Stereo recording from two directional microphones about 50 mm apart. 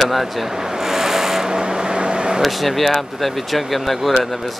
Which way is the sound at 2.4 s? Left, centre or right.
Centre.